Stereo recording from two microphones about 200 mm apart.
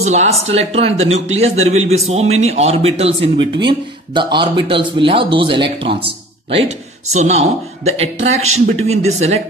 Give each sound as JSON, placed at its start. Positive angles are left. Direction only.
{"t": 0.0, "sound": "a man's voice", "side_deg": -35}